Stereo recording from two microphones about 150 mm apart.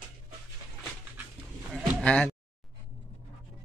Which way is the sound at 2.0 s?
10° left (ahead or behind).